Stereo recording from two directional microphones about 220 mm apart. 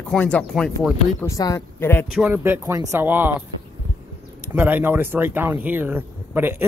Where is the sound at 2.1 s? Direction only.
10° right (ahead or behind).